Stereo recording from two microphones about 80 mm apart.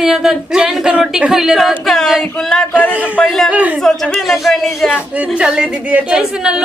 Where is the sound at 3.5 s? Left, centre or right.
Centre.